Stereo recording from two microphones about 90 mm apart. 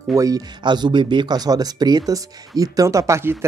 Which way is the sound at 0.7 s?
55° right (ahead or behind).